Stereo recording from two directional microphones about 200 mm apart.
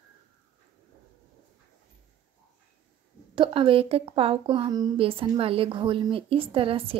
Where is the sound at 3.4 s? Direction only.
25° right (ahead or behind).